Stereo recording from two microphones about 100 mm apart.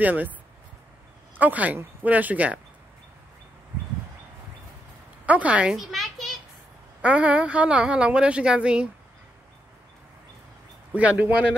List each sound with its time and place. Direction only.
0.0 s speech: 15° right (ahead or behind)
1.3 s speech: 15° right (ahead or behind)
5.2 s a sound: 15° right (ahead or behind)
7.0 s speech: 15° right (ahead or behind)
10.9 s speech: 15° right (ahead or behind)